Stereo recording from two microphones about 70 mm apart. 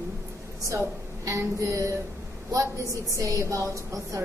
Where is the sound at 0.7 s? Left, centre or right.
Right.